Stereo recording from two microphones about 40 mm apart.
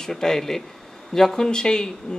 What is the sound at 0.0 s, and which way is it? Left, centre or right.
Speech, centre.